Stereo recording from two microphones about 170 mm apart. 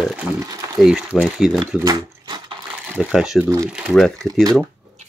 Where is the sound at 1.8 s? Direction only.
25° right (ahead or behind).